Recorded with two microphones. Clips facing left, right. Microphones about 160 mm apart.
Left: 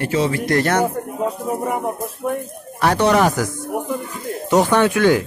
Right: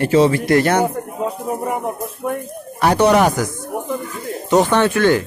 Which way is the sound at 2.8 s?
10° right (ahead or behind).